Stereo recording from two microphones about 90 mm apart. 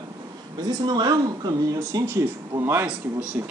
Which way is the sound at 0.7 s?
50° right (ahead or behind).